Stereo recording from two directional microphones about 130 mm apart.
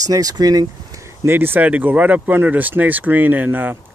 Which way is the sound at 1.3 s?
15° right (ahead or behind).